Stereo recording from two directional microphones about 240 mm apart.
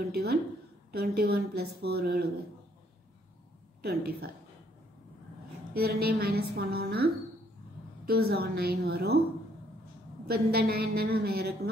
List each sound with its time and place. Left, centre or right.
0.1 s a woman's voice: right
3.8 s a woman's voice: right
5.8 s a woman's voice: right
10.2 s a woman's voice: right